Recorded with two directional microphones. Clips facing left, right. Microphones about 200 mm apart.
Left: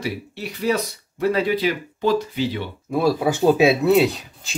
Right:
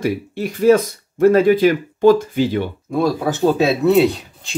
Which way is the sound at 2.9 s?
5° left (ahead or behind).